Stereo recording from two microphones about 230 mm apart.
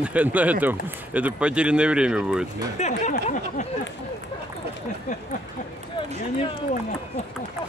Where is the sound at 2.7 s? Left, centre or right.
Left.